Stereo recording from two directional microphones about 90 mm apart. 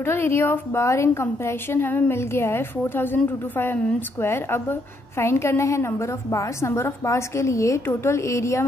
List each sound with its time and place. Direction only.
0.0 s a woman's voice: 25° left (ahead or behind)